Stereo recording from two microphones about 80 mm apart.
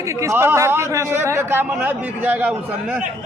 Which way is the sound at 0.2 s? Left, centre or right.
Right.